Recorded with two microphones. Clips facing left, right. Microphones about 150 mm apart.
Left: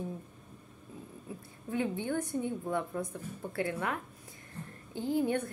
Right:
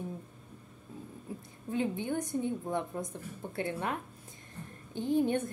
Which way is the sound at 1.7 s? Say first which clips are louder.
Even; 20° right (ahead or behind).